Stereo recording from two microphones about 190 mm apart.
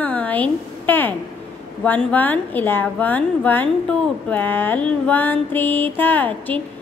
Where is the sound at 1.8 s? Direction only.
10° left (ahead or behind).